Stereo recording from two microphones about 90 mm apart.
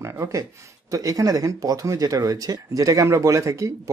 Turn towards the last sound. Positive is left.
turn(degrees=-35)  # may be behind; listen again after turning